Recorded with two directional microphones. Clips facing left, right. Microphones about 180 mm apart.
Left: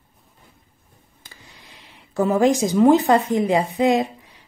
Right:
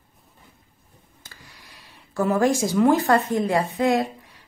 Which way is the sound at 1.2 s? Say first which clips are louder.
Left 1 dB; 20° left (ahead or behind).